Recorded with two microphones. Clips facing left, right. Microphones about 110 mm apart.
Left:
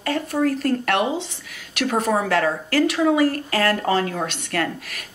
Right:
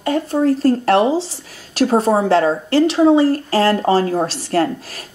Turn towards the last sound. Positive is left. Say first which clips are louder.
# right 7 dB
turn(degrees=-30)  # may be behind; listen again after turning